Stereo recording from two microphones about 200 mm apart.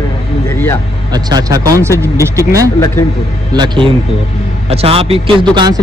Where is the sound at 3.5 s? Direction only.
20° right (ahead or behind).